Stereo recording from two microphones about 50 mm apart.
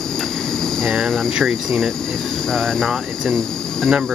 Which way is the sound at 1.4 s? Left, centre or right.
Centre.